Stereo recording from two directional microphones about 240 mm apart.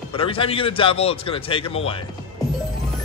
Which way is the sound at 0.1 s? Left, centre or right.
Left.